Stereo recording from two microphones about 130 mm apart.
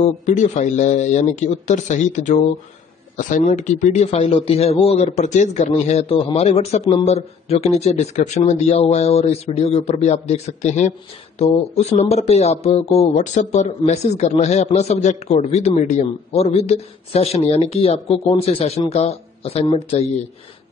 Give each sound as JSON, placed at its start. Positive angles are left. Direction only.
{"t": 0.0, "sound": "speech", "side_deg": 70}
{"t": 3.2, "sound": "speech", "side_deg": 90}
{"t": 6.0, "sound": "speech", "side_deg": 45}